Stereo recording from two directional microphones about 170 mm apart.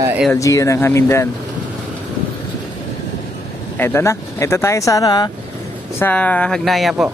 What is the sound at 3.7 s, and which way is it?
Speech, 15° left (ahead or behind).